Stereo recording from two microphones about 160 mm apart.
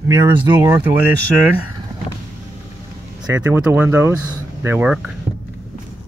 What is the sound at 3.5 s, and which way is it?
Speech, 10° right (ahead or behind).